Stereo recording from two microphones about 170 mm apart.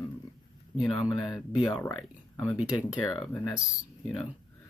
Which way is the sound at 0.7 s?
5° right (ahead or behind).